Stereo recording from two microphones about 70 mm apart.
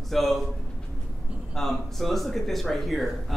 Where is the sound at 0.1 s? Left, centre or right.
Centre.